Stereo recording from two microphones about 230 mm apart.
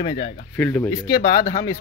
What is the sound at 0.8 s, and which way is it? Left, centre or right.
Speech, left.